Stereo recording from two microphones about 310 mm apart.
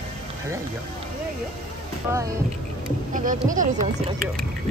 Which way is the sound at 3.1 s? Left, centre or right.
Right.